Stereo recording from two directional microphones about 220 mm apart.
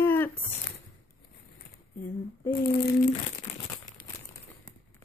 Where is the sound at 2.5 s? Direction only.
40° left (ahead or behind).